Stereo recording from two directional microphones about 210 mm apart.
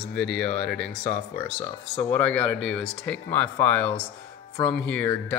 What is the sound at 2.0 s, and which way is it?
Speech, 5° left (ahead or behind).